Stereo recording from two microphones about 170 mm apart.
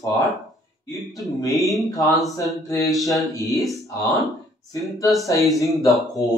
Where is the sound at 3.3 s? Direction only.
20° left (ahead or behind).